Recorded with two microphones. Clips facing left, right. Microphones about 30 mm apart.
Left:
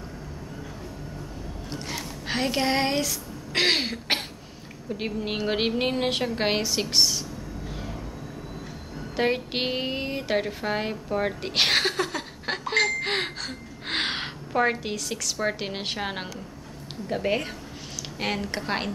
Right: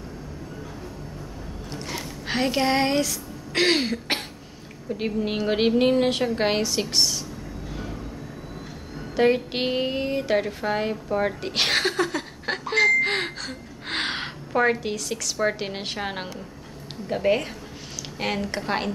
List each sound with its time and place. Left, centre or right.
2.2 s speech: centre
9.1 s a woman's voice: centre